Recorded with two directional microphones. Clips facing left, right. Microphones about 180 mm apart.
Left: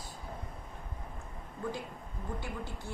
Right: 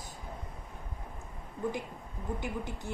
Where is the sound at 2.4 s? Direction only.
20° right (ahead or behind).